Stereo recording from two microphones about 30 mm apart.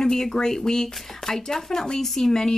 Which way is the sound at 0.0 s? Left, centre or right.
Centre.